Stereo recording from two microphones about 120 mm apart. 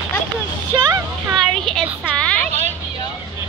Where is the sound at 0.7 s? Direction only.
35° right (ahead or behind).